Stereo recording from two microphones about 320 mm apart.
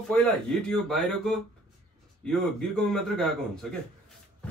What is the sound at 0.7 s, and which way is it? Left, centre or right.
A man's voice, centre.